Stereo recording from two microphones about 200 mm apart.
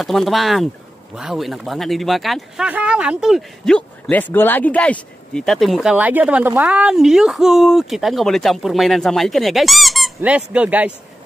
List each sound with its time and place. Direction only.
0.0 s speech: centre (ahead or behind)